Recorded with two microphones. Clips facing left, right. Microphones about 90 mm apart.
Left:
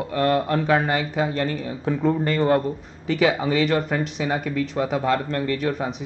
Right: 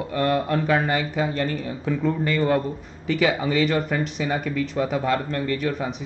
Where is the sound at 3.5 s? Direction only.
50° left (ahead or behind).